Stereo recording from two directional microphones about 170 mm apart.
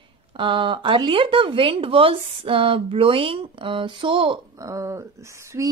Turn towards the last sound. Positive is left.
turn(degrees=-20)  # may be behind; listen again after turning